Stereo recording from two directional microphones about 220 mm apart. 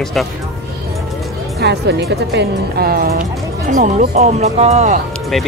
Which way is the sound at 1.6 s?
50° right (ahead or behind).